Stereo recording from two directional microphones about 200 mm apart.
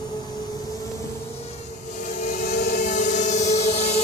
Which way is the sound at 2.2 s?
40° left (ahead or behind).